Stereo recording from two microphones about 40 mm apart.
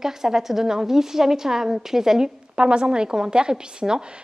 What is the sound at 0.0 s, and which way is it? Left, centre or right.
A woman's voice, centre.